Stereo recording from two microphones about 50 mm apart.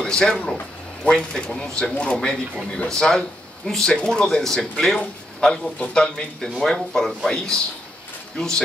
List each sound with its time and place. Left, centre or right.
0.0 s speech: centre
6.4 s speech: centre
7.2 s speech: centre